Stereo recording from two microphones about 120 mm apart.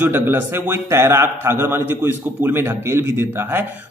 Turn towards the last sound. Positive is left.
turn(degrees=-15)  # may be behind; listen again after turning